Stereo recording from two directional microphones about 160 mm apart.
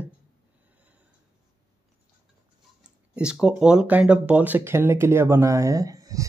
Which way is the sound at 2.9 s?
5° right (ahead or behind).